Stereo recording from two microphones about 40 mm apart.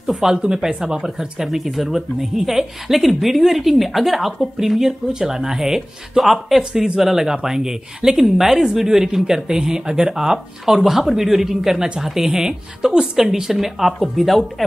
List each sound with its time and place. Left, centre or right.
0.0 s speech: centre
0.4 s speech: centre